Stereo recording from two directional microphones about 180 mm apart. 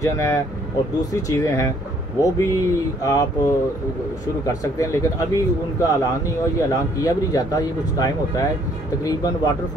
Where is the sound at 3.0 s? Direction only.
20° left (ahead or behind).